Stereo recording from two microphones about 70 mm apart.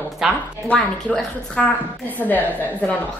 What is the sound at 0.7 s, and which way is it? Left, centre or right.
A woman's voice, centre.